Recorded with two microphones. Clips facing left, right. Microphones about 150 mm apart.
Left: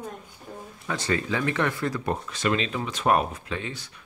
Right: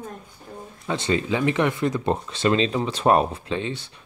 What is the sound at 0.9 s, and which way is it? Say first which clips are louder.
Speech: right 4 dB; 20° right (ahead or behind).